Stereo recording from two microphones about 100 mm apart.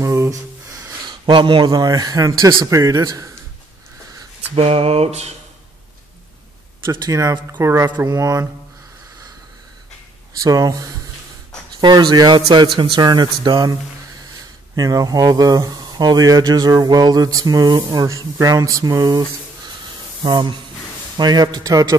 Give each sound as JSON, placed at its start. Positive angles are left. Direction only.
{"t": 0.0, "sound": "a sound", "side_deg": -30}
{"t": 1.2, "sound": "speech", "side_deg": -55}
{"t": 1.7, "sound": "speech", "side_deg": -40}
{"t": 4.6, "sound": "a sound", "side_deg": -80}
{"t": 7.1, "sound": "speech", "side_deg": -35}
{"t": 10.4, "sound": "speech", "side_deg": -35}
{"t": 12.6, "sound": "speech", "side_deg": -60}
{"t": 14.8, "sound": "speech", "side_deg": -35}
{"t": 18.0, "sound": "speech", "side_deg": -35}
{"t": 20.2, "sound": "speech", "side_deg": -50}